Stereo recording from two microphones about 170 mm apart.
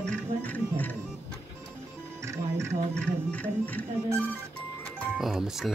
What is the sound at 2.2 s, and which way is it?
Music, 15° right (ahead or behind).